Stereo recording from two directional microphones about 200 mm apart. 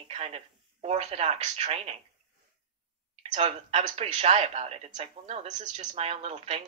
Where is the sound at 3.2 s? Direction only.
30° right (ahead or behind).